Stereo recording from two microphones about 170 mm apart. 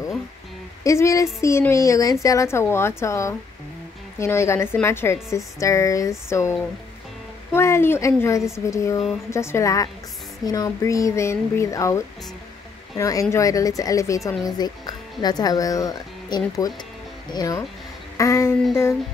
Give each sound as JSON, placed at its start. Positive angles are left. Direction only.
{"t": 0.8, "sound": "a woman's voice", "side_deg": 15}
{"t": 7.5, "sound": "a woman's voice", "side_deg": 15}
{"t": 18.1, "sound": "a sound", "side_deg": 15}